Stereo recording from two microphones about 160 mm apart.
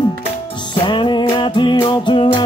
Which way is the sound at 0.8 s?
30° left (ahead or behind).